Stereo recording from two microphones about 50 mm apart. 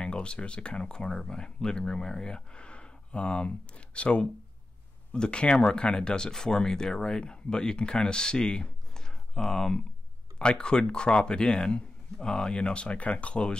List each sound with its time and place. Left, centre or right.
0.0 s speech: centre
10.4 s speech: centre